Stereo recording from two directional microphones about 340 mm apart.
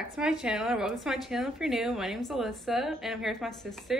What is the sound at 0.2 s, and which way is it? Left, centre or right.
A woman's voice, centre.